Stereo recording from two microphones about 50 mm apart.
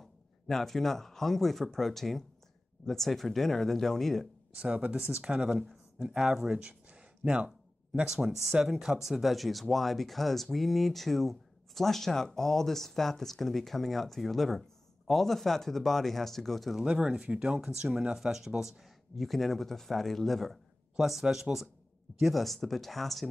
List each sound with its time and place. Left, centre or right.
0.0 s speech: centre
4.6 s speech: right
6.1 s a sound: centre
8.1 s speech: centre
16.8 s speech: centre
21.0 s speech: centre